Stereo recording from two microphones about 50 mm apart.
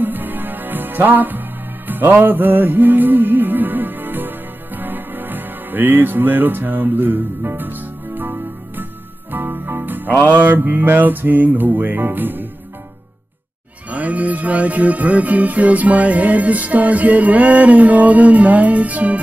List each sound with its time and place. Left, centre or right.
0.0 s music: right
13.8 s music: right